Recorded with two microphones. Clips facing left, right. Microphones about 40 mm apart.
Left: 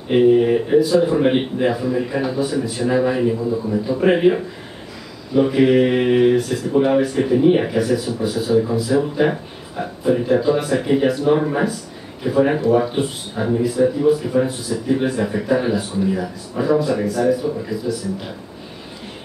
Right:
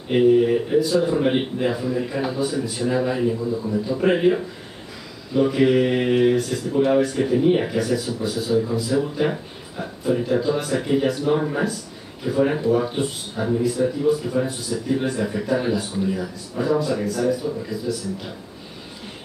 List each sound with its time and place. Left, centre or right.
0.1 s a man's voice: centre
2.9 s a man's voice: centre
12.9 s a man's voice: centre